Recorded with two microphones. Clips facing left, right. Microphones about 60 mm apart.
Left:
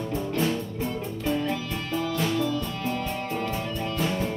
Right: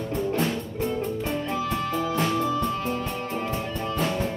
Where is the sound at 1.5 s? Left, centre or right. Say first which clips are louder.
Right 3 dB; right.